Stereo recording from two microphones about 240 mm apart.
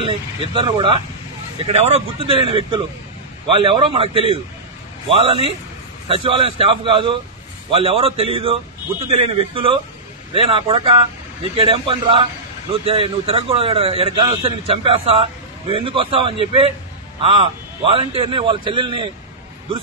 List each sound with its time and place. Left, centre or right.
0.0 s a man's voice: right